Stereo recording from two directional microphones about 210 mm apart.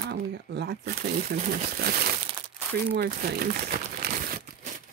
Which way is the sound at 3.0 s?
50° right (ahead or behind).